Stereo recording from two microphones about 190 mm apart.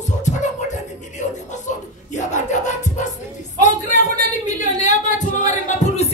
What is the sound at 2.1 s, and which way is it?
Music, 40° left (ahead or behind).